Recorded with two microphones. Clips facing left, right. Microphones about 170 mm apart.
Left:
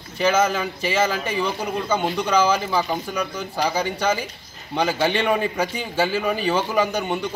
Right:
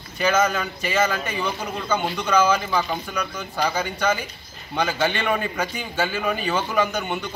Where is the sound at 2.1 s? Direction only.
10° left (ahead or behind).